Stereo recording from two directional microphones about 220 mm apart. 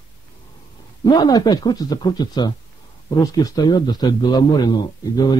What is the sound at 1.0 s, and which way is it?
A man's voice, 20° left (ahead or behind).